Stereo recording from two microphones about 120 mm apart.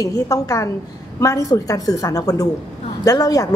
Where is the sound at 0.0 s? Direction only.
30° left (ahead or behind).